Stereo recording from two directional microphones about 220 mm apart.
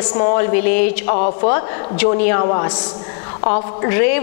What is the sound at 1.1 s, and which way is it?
Speech, 35° left (ahead or behind).